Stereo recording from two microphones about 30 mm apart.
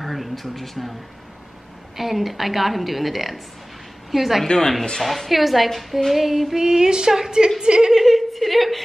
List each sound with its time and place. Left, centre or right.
0.0 s a sound: centre
2.0 s a woman's voice: centre
4.5 s speech: centre
5.3 s a woman's voice: centre
6.0 s female singing: centre
6.6 s a woman's voice: right
7.9 s a woman's voice: centre